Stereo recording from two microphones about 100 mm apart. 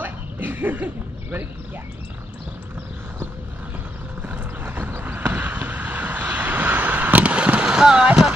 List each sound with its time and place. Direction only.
0.0 s bow-wow: 20° right (ahead or behind)
4.2 s vehicle: 15° right (ahead or behind)